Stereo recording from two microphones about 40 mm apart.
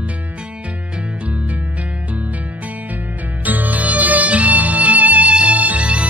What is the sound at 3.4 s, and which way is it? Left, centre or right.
Music, right.